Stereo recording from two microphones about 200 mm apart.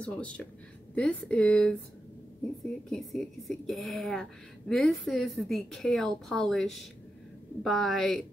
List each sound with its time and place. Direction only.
0.0 s a woman's voice: 5° left (ahead or behind)
2.9 s a woman's voice: centre (ahead or behind)